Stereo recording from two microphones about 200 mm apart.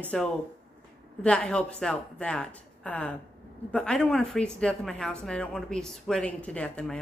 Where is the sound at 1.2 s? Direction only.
5° left (ahead or behind).